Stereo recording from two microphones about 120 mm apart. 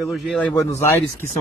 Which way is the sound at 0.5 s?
25° left (ahead or behind).